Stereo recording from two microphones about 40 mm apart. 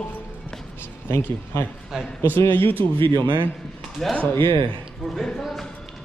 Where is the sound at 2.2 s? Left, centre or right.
Left.